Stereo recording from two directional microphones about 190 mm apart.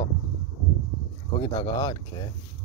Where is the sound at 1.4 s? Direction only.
20° left (ahead or behind).